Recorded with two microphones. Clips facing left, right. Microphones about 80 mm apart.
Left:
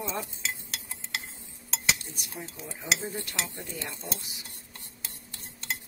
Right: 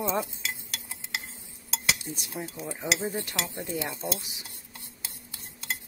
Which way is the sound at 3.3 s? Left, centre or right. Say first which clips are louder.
Right 4 dB; centre.